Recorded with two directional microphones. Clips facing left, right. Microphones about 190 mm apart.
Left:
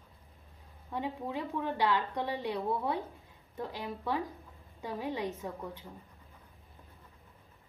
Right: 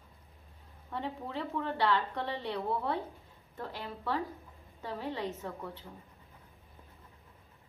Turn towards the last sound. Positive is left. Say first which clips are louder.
# left 1 dB
turn(degrees=15)  # may be behind; listen again after turning